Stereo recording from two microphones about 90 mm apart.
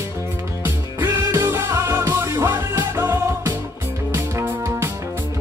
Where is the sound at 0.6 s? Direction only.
25° right (ahead or behind).